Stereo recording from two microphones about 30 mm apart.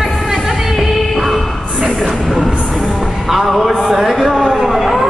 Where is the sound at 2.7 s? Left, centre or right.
Centre.